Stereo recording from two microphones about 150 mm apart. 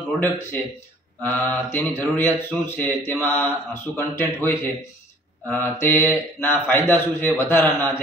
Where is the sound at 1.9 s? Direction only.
15° left (ahead or behind).